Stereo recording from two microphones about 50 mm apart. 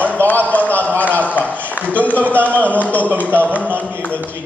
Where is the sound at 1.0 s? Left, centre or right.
Left.